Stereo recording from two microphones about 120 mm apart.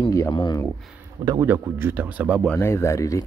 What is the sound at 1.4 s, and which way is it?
Speech, 20° right (ahead or behind).